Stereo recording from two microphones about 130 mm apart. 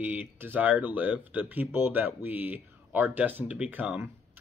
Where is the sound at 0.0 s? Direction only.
10° right (ahead or behind).